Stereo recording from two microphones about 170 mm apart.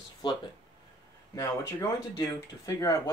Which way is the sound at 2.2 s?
20° left (ahead or behind).